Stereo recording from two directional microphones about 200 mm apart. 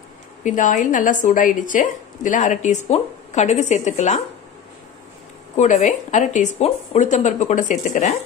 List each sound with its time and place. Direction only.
0.4 s speech: 40° left (ahead or behind)
5.6 s speech: 35° left (ahead or behind)